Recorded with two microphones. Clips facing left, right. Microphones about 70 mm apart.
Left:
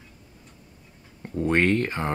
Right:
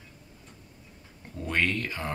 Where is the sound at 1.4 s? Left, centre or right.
Left.